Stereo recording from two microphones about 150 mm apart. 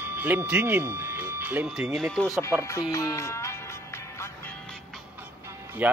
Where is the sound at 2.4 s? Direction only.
15° left (ahead or behind).